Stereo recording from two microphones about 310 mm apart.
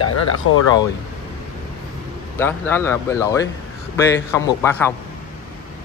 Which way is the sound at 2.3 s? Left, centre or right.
Centre.